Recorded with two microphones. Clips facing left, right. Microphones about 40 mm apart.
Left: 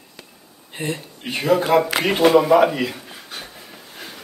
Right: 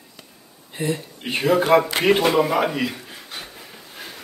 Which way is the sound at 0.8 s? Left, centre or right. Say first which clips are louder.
Right 2 dB; left.